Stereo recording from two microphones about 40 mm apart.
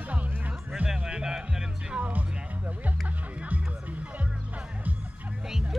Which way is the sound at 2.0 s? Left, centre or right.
Right.